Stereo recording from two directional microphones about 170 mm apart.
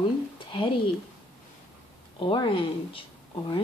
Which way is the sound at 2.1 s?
30° left (ahead or behind).